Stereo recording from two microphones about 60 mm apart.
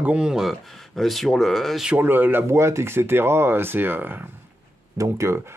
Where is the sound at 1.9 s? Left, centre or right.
Right.